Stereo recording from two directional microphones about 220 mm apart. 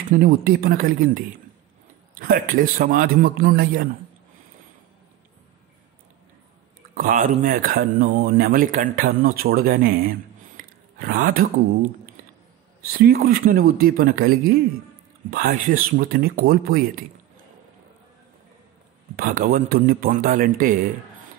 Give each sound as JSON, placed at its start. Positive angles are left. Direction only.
{"t": 0.1, "sound": "speech", "side_deg": -40}
{"t": 7.0, "sound": "speech", "side_deg": -40}
{"t": 12.9, "sound": "speech", "side_deg": -45}
{"t": 19.1, "sound": "speech", "side_deg": -40}